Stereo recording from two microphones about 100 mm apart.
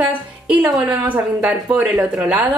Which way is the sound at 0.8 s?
15° right (ahead or behind).